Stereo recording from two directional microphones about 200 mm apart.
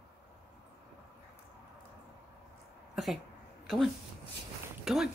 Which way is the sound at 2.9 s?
Centre (ahead or behind).